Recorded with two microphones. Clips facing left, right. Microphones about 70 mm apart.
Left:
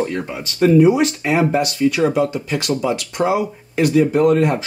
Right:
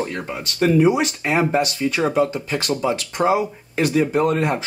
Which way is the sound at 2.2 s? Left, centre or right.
Right.